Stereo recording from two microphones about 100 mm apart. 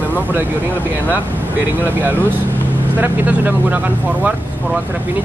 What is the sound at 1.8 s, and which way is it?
Speech, 20° right (ahead or behind).